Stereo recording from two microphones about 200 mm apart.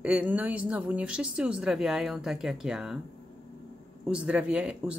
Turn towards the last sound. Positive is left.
turn(degrees=-5)  # may be behind; listen again after turning